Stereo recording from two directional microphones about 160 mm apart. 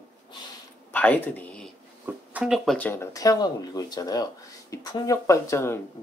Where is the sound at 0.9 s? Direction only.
10° left (ahead or behind).